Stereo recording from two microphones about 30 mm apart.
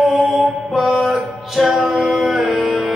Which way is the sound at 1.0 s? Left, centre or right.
Centre.